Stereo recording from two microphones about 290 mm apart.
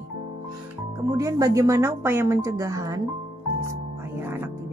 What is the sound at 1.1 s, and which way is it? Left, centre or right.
Speech, centre.